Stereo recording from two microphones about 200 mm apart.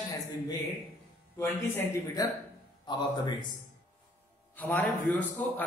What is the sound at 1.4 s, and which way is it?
A man's voice, 15° left (ahead or behind).